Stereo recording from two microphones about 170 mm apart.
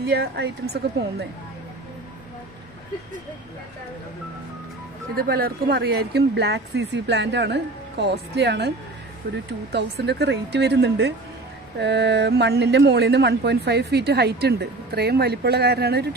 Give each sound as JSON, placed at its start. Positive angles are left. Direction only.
{"t": 0.0, "sound": "speech", "side_deg": -70}
{"t": 5.1, "sound": "speech", "side_deg": -65}